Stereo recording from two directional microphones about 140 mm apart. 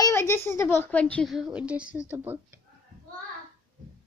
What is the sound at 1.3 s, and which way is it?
Speech, 5° right (ahead or behind).